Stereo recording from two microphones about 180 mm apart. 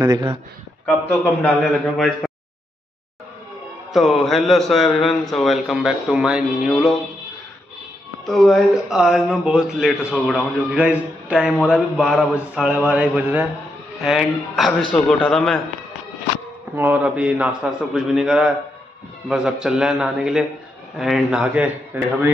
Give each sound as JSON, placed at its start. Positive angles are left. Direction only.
{"t": 0.0, "sound": "a man's voice", "side_deg": -20}
{"t": 0.8, "sound": "a man's voice", "side_deg": 10}
{"t": 3.9, "sound": "a man's voice", "side_deg": 0}
{"t": 8.3, "sound": "a man's voice", "side_deg": 0}
{"t": 10.7, "sound": "a man's voice", "side_deg": -10}
{"t": 16.7, "sound": "a man's voice", "side_deg": -10}